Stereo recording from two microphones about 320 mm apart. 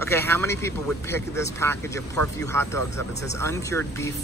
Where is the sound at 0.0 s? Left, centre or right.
Centre.